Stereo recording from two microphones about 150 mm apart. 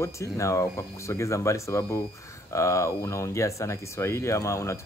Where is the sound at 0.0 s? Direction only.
20° left (ahead or behind).